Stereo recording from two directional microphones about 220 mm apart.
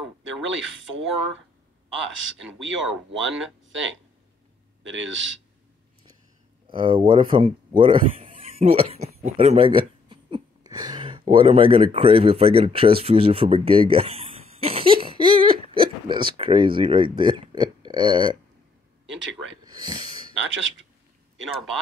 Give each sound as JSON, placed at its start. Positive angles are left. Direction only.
{"t": 2.1, "sound": "speech", "side_deg": -60}
{"t": 3.1, "sound": "speech", "side_deg": 0}
{"t": 3.6, "sound": "speech", "side_deg": -60}
{"t": 6.7, "sound": "speech", "side_deg": -20}
{"t": 14.6, "sound": "a sound", "side_deg": -25}
{"t": 15.7, "sound": "speech", "side_deg": -25}
{"t": 19.0, "sound": "speech", "side_deg": -60}
{"t": 19.6, "sound": "a sound", "side_deg": -20}